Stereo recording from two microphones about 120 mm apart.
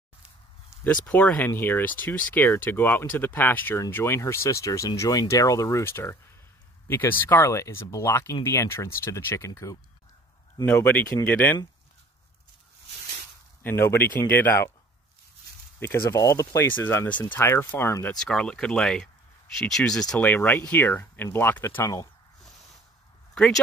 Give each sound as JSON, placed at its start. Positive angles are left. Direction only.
{"t": 1.0, "sound": "speech", "side_deg": 10}
{"t": 10.6, "sound": "speech", "side_deg": 15}
{"t": 13.6, "sound": "speech", "side_deg": 20}
{"t": 15.8, "sound": "speech", "side_deg": 25}
{"t": 18.1, "sound": "speech", "side_deg": 5}
{"t": 23.3, "sound": "speech", "side_deg": 5}